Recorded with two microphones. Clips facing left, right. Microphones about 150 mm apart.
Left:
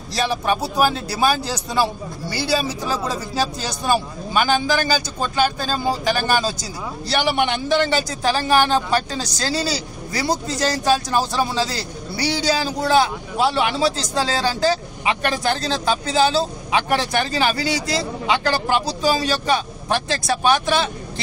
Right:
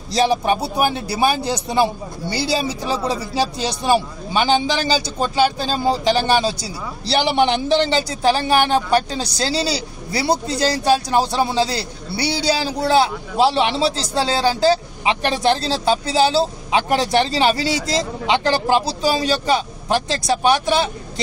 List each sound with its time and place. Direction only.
0.1 s a man's voice: 20° right (ahead or behind)